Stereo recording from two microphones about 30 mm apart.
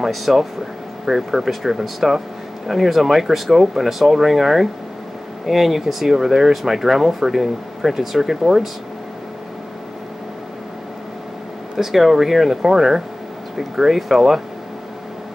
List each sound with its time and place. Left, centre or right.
0.1 s speech: centre
1.0 s speech: centre
11.7 s speech: centre